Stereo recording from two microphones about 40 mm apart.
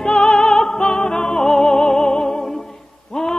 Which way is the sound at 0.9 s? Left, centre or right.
Left.